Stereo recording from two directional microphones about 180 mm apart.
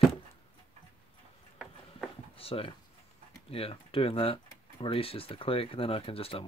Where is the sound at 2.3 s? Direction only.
30° left (ahead or behind).